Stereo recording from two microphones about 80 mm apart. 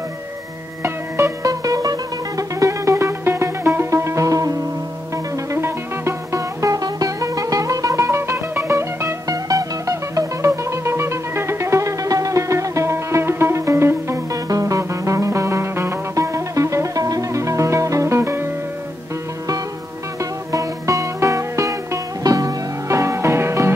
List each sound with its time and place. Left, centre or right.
0.8 s music: right
1.4 s music: right
20.5 s music: right